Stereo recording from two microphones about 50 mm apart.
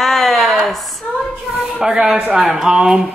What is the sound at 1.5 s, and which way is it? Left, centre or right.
Speech, centre.